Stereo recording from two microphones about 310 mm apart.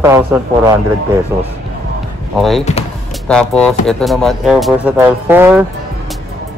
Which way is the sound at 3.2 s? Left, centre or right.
Centre.